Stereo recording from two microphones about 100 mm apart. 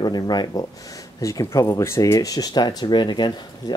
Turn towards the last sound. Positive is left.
turn(degrees=50)  # may be behind; listen again after turning